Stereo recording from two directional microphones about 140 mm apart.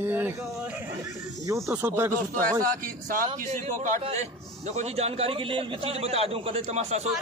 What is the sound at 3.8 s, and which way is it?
A man's voice, 60° right (ahead or behind).